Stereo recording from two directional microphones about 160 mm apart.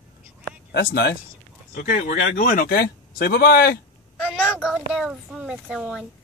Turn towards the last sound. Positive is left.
turn(degrees=-5)  # may be behind; listen again after turning